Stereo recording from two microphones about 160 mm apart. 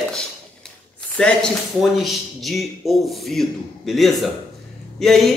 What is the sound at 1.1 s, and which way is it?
A man's voice, 5° left (ahead or behind).